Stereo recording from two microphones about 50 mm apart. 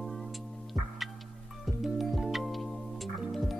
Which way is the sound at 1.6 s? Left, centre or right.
Centre.